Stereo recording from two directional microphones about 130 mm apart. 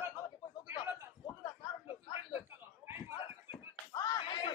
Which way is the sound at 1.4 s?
35° left (ahead or behind).